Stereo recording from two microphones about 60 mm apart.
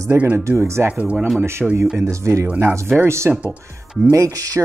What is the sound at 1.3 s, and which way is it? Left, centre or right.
Speech, right.